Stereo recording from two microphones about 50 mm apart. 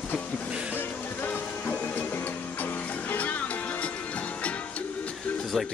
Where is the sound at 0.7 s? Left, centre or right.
Left.